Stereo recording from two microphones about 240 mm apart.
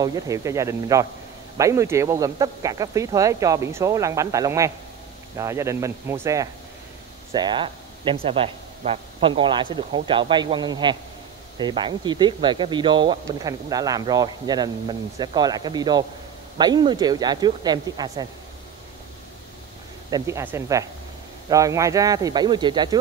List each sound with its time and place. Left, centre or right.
0.0 s speech: centre
20.1 s speech: centre